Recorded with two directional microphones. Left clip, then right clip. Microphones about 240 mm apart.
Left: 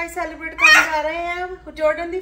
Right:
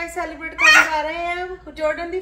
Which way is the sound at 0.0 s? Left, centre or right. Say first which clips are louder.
Left 1 dB; centre.